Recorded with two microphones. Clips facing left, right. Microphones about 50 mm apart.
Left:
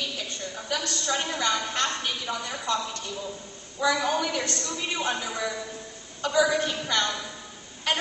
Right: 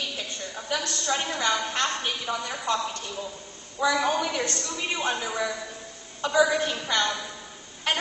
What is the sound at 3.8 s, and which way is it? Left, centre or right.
Speech, right.